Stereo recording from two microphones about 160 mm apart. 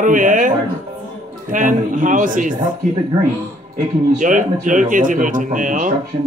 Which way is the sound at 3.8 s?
50° right (ahead or behind).